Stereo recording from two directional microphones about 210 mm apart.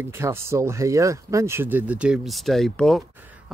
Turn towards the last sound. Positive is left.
turn(degrees=0)  # may be behind; listen again after turning